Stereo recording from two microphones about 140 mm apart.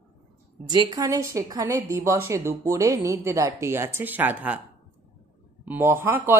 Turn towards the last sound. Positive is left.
turn(degrees=-15)  # may be behind; listen again after turning